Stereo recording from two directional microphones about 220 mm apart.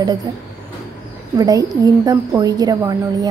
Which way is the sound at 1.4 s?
15° right (ahead or behind).